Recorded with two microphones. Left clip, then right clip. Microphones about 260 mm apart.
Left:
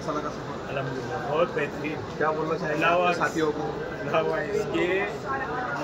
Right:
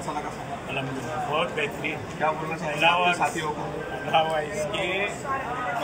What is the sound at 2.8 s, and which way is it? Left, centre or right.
Speech, centre.